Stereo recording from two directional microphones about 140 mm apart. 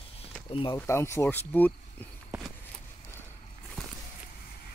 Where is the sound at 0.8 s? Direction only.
20° left (ahead or behind).